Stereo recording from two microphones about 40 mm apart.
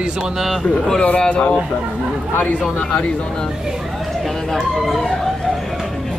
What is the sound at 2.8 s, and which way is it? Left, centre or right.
Speech, left.